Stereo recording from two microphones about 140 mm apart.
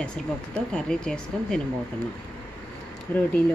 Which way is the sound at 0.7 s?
5° left (ahead or behind).